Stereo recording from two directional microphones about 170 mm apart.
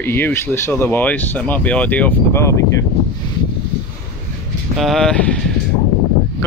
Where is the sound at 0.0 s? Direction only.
15° left (ahead or behind).